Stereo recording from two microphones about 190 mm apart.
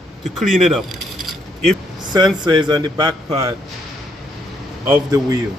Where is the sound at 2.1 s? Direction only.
20° right (ahead or behind).